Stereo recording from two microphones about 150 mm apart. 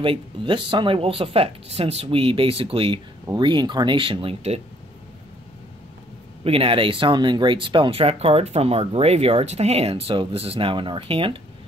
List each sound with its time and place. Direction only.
0.0 s speech: 35° right (ahead or behind)
6.4 s speech: 40° right (ahead or behind)